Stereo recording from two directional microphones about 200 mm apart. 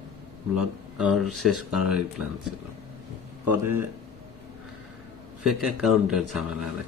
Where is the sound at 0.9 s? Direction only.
5° right (ahead or behind).